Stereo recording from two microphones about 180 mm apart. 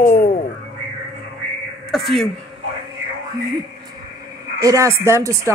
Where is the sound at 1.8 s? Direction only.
Centre (ahead or behind).